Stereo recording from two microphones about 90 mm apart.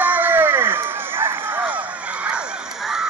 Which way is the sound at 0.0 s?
20° right (ahead or behind).